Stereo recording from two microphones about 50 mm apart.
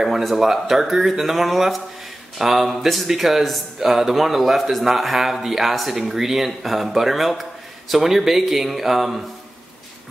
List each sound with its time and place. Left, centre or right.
0.0 s speech: centre